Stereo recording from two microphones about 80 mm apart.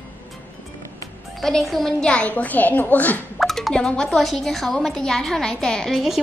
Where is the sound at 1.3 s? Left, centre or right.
Centre; by 3.2 s left.